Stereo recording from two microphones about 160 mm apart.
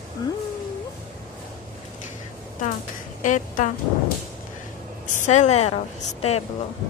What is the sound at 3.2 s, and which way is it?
Speech, 50° left (ahead or behind).